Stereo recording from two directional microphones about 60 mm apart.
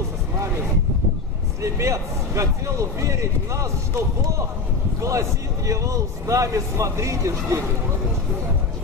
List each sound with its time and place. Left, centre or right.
1.6 s a man's voice: right
5.0 s a man's voice: right